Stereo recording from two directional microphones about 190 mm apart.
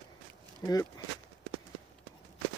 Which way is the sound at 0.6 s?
20° left (ahead or behind).